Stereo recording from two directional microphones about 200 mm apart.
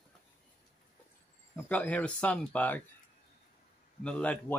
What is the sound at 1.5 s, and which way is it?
Speech, 5° left (ahead or behind).